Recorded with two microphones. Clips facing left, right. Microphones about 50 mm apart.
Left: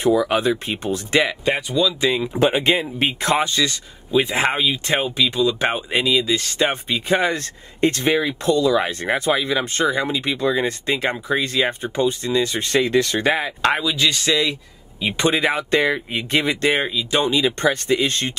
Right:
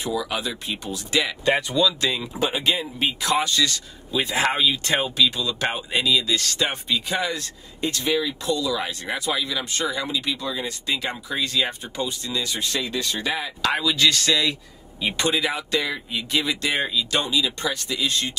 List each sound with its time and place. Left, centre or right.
0.0 s speech: left
1.4 s speech: centre
2.0 s speech: centre
2.3 s speech: left
13.8 s speech: centre
15.3 s speech: left
16.8 s speech: left
17.3 s speech: left